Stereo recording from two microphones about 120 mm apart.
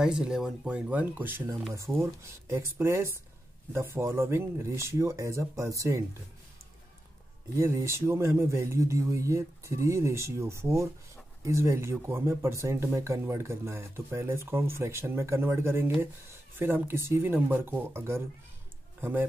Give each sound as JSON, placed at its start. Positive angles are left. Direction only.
{"t": 0.0, "sound": "speech", "side_deg": -5}
{"t": 7.5, "sound": "speech", "side_deg": -20}